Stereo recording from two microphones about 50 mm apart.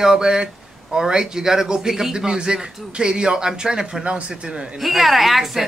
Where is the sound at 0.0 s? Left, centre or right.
Centre.